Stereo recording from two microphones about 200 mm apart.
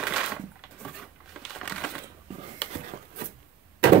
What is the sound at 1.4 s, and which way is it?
Crushing, 5° left (ahead or behind).